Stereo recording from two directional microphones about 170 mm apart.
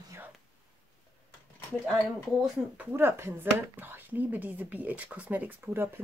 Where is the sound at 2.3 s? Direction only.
10° right (ahead or behind).